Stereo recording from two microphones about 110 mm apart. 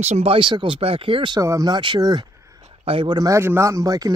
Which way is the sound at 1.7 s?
45° right (ahead or behind).